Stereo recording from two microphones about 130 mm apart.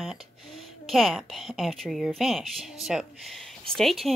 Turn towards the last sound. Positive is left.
turn(degrees=0)  # may be behind; listen again after turning